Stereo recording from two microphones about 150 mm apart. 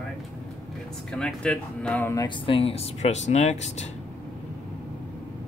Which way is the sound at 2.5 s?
40° left (ahead or behind).